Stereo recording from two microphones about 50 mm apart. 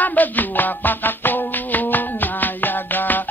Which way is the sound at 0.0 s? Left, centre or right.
Left.